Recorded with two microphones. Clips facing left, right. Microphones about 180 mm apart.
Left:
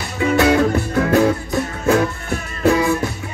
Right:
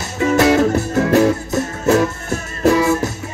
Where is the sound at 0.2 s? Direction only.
40° right (ahead or behind).